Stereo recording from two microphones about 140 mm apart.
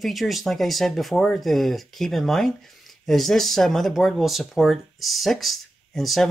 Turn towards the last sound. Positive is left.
turn(degrees=0)  # may be behind; listen again after turning